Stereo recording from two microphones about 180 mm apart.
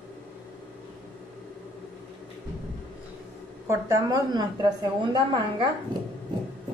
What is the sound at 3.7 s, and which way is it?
A woman's voice, 20° right (ahead or behind).